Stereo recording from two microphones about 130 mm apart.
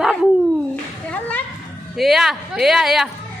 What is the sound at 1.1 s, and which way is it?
Speech, 10° left (ahead or behind).